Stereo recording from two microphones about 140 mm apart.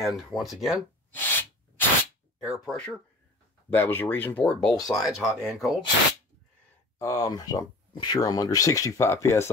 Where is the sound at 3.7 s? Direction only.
15° left (ahead or behind).